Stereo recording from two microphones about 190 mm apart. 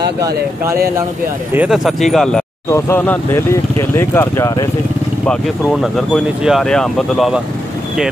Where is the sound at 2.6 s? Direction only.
15° left (ahead or behind).